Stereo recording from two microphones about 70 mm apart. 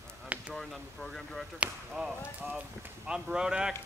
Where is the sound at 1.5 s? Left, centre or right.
Centre.